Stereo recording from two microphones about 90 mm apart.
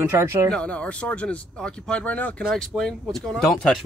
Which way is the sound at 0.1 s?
30° right (ahead or behind).